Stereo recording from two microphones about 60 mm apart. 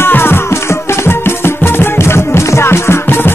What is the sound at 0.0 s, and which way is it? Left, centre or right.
Music, left.